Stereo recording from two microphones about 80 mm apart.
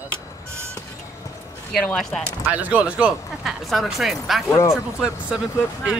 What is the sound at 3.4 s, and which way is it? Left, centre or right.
Speech, centre.